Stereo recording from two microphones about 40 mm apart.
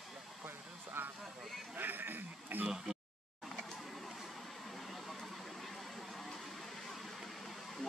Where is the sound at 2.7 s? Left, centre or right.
Centre.